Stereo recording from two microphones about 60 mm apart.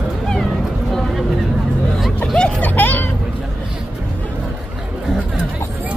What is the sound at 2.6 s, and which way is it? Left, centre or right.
Vehicle, left.